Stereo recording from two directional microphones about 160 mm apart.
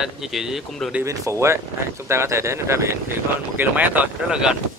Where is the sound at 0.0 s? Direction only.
Centre (ahead or behind).